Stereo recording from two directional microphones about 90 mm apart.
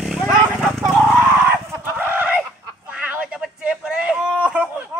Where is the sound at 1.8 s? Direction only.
20° right (ahead or behind).